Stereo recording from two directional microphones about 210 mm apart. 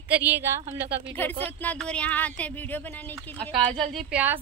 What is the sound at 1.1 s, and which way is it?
Speech, 10° left (ahead or behind).